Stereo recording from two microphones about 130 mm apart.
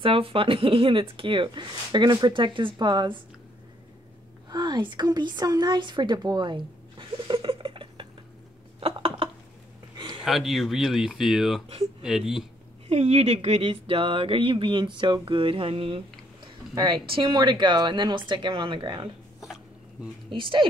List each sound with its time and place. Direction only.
0.0 s speech: 45° right (ahead or behind)
4.5 s speech: 35° right (ahead or behind)
8.7 s a sound: 45° right (ahead or behind)
10.2 s speech: centre (ahead or behind)
12.8 s speech: 55° right (ahead or behind)
16.7 s speech: 30° right (ahead or behind)
20.2 s speech: 40° right (ahead or behind)